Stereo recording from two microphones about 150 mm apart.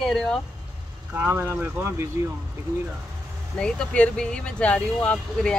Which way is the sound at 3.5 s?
5° left (ahead or behind).